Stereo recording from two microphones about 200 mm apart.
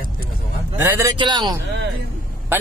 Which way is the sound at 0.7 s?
10° right (ahead or behind).